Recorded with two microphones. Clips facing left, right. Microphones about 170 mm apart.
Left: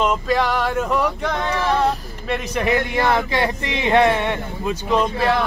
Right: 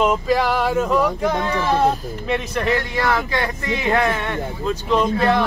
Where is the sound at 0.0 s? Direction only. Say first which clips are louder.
Right 1 dB; 5° right (ahead or behind).